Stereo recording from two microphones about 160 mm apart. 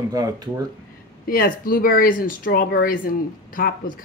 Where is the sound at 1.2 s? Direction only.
65° left (ahead or behind).